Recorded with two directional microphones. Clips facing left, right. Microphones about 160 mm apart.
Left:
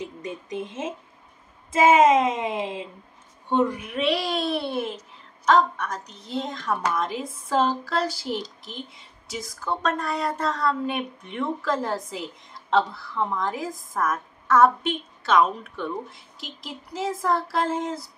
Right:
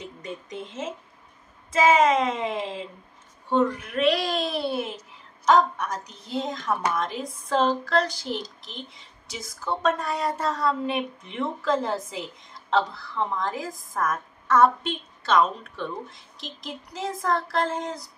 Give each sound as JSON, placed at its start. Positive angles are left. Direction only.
{"t": 0.2, "sound": "a woman's voice", "side_deg": 20}